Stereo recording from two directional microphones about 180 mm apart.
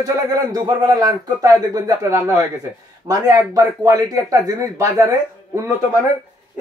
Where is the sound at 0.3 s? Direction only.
20° right (ahead or behind).